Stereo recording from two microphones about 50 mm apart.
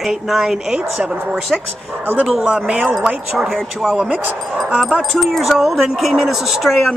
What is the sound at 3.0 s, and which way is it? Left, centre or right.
Speech, centre.